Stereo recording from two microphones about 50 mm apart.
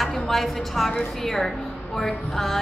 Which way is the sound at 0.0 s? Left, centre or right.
Centre.